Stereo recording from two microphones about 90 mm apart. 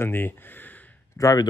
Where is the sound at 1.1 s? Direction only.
40° left (ahead or behind).